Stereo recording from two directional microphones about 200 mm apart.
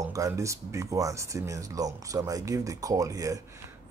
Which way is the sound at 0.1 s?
15° right (ahead or behind).